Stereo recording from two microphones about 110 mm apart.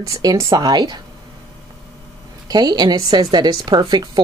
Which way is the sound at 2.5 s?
35° right (ahead or behind).